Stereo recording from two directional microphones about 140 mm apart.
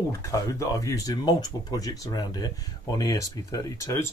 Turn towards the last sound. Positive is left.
turn(degrees=20)  # may be behind; listen again after turning